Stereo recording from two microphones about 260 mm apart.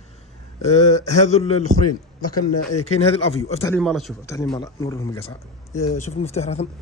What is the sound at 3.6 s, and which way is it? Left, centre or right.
Speech, centre.